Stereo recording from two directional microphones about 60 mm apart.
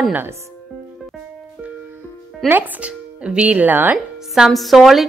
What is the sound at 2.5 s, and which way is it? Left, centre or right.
Speech, right.